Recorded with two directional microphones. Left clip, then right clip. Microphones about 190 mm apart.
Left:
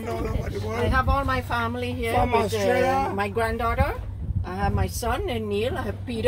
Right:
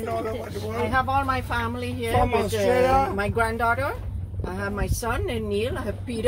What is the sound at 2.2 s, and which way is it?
Speech, 15° left (ahead or behind).